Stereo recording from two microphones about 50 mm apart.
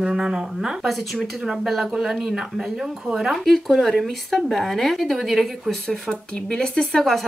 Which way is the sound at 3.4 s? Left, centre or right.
Centre.